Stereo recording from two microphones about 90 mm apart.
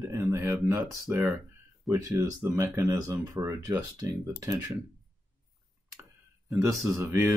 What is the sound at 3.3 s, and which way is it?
Speech, 30° right (ahead or behind).